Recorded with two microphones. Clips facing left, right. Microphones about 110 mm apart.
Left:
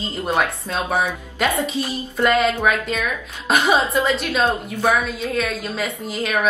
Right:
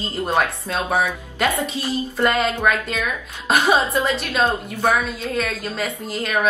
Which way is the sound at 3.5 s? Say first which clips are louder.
Even; centre (ahead or behind).